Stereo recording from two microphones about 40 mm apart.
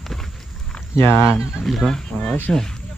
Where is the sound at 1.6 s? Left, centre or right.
Centre.